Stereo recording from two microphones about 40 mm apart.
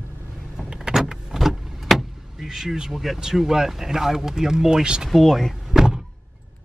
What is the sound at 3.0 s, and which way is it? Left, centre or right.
Speech, centre.